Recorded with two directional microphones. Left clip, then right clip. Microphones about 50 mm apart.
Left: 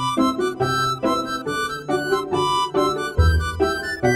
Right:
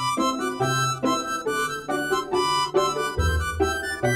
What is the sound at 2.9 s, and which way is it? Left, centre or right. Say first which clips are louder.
Music: left 2 dB; left.